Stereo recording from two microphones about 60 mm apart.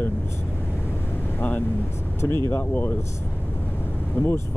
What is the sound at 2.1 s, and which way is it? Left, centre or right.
Speech, left.